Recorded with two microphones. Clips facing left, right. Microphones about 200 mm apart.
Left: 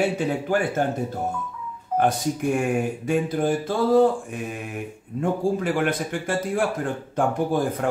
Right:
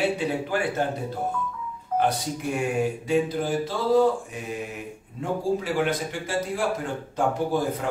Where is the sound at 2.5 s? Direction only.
50° left (ahead or behind).